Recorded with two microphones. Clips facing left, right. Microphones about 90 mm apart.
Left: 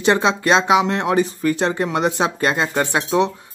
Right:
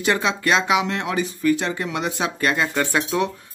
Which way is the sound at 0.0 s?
30° left (ahead or behind).